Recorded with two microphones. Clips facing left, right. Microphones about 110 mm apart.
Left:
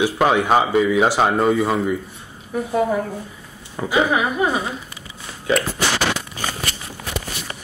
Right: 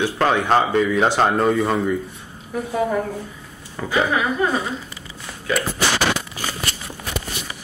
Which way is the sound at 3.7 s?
15° left (ahead or behind).